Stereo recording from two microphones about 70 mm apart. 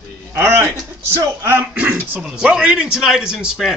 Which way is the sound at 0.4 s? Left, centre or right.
Right.